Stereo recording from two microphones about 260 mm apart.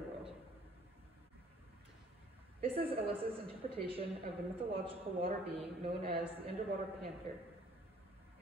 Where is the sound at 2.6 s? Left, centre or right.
Right.